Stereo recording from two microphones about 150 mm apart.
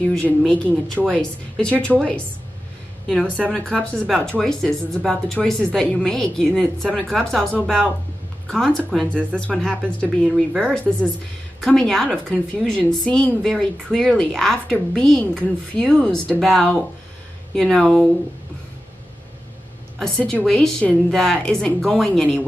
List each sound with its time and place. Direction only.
0.1 s a woman's voice: 5° left (ahead or behind)
20.0 s a woman's voice: 5° left (ahead or behind)